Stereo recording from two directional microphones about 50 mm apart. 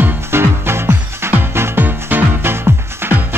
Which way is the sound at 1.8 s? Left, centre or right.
Right.